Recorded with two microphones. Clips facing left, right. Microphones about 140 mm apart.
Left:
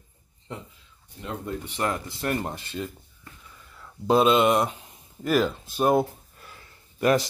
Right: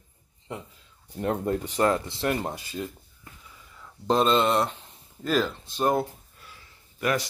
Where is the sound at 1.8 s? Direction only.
25° right (ahead or behind); by 6.1 s 10° left (ahead or behind).